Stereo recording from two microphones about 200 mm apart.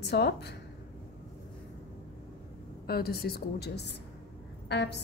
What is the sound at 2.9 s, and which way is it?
A woman's voice, 50° left (ahead or behind).